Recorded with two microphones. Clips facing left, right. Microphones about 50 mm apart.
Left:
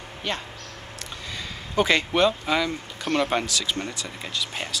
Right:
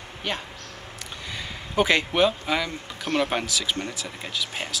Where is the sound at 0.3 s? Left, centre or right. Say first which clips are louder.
Even; centre.